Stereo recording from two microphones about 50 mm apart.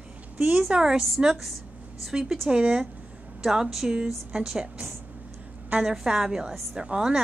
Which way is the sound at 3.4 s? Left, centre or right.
Centre.